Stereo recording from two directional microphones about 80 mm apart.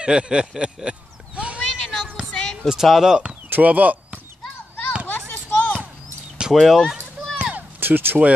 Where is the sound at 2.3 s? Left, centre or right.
Centre.